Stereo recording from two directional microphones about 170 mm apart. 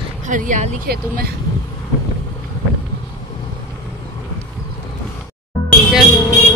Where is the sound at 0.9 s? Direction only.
65° right (ahead or behind).